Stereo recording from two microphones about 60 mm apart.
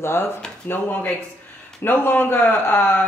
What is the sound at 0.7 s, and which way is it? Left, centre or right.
Speech, left.